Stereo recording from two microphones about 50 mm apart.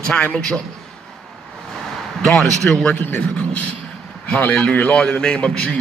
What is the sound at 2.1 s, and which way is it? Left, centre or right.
A man's voice, centre.